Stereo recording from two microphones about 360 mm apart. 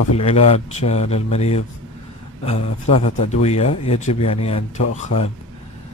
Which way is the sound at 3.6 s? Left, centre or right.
Left.